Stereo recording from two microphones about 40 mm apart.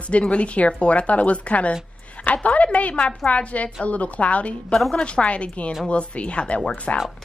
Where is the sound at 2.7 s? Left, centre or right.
Left.